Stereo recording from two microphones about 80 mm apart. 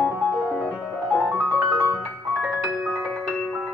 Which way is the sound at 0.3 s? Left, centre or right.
Centre.